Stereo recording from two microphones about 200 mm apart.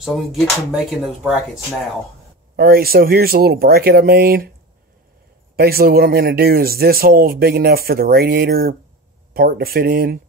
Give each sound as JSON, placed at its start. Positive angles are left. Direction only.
{"t": 0.0, "sound": "speech", "side_deg": 0}
{"t": 2.5, "sound": "speech", "side_deg": -50}
{"t": 5.6, "sound": "speech", "side_deg": -50}